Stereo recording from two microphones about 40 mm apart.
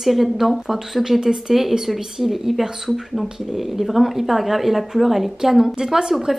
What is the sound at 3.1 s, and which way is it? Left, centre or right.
Speech, centre.